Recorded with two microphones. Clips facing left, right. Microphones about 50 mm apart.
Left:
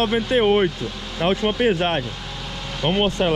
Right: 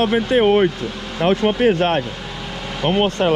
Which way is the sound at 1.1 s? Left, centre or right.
Right.